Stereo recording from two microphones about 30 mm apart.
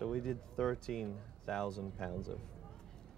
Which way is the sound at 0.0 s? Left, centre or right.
Centre.